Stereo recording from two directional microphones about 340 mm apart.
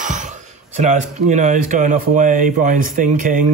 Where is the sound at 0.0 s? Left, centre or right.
Right.